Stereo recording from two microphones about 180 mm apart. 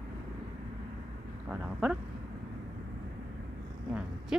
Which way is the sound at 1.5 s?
10° right (ahead or behind).